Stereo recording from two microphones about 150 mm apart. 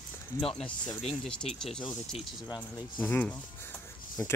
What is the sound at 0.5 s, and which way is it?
Speech, 5° left (ahead or behind).